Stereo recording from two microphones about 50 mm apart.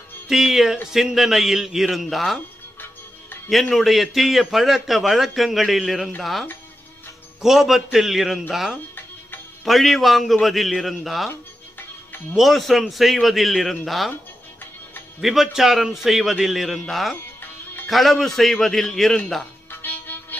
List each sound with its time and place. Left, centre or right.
0.3 s a man's voice: centre
3.7 s a man's voice: centre
7.4 s a man's voice: centre
12.4 s a man's voice: centre
15.1 s a man's voice: centre
19.7 s music: left